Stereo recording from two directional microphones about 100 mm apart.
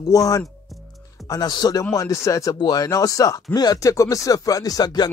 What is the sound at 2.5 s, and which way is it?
Speech, 45° left (ahead or behind).